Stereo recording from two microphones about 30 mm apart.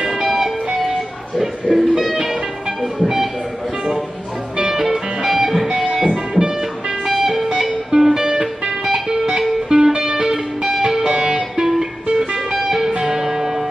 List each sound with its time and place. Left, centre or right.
0.0 s music: centre
1.4 s speech: centre
4.6 s music: centre
7.9 s music: centre
11.1 s music: right
12.6 s music: centre